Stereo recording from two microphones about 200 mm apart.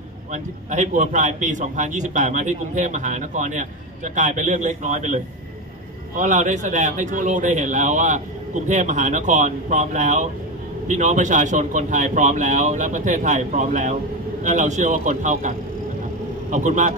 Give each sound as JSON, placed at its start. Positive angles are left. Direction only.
{"t": 0.3, "sound": "a man's voice", "side_deg": -40}